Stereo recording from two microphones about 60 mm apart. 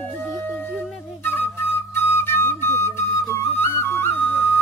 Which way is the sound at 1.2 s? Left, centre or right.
Left.